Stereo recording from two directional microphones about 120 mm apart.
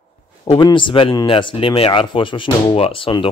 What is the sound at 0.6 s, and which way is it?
Speech, 40° left (ahead or behind).